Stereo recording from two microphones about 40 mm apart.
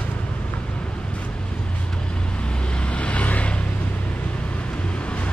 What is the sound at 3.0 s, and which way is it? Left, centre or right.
Vehicle, left.